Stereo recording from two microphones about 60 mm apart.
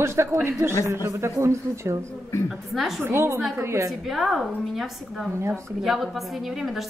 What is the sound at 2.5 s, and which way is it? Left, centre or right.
Speech, centre.